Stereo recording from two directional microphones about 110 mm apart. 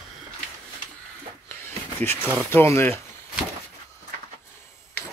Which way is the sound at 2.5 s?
20° left (ahead or behind).